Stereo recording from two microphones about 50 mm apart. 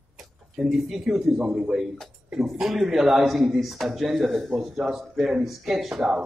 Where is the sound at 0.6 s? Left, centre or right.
Centre.